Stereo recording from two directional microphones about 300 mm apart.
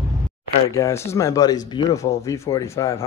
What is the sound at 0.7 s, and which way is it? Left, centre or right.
Speech, centre.